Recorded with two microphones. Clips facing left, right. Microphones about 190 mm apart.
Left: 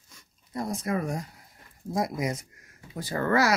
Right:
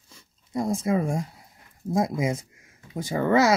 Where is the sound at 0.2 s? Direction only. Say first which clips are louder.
Right 5 dB; 25° right (ahead or behind).